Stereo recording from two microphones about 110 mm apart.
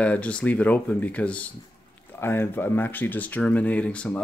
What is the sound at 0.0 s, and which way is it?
Speech, 10° left (ahead or behind).